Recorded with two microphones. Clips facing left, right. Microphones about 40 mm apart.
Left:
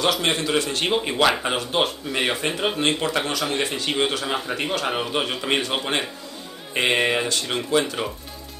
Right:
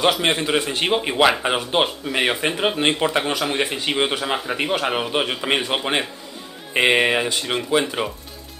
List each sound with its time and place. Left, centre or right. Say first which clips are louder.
0.0 s speech: right 3 dB; centre